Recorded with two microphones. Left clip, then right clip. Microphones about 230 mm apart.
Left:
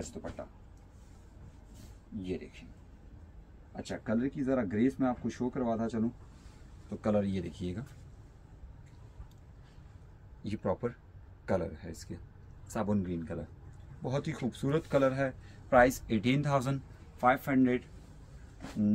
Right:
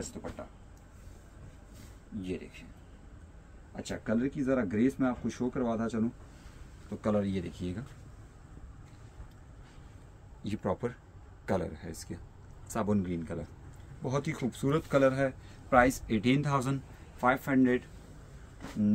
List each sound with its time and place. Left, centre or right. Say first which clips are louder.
0.0 s speech: right 1 dB; centre
2.2 s a man's voice: even; centre
3.7 s a man's voice: right 1 dB; centre
10.4 s a man's voice: even; centre